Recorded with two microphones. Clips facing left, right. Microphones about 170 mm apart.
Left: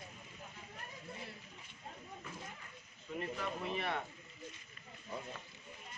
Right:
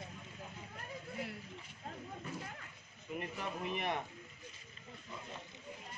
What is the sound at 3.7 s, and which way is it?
Speech, 15° right (ahead or behind).